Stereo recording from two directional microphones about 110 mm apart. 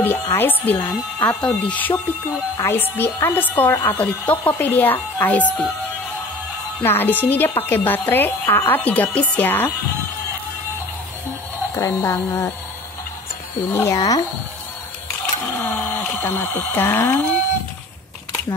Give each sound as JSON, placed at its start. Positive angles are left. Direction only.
{"t": 0.0, "sound": "a woman's voice", "side_deg": 20}
{"t": 6.8, "sound": "speech", "side_deg": 20}
{"t": 11.7, "sound": "a woman's voice", "side_deg": 25}
{"t": 13.7, "sound": "a woman's voice", "side_deg": 25}
{"t": 15.5, "sound": "a sound", "side_deg": 15}